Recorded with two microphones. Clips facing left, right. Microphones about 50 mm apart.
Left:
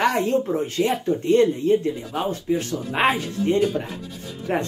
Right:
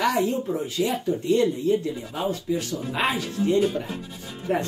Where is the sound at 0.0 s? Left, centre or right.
Left.